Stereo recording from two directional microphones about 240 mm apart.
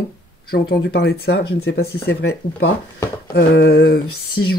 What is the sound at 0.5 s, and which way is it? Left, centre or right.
Speech, left.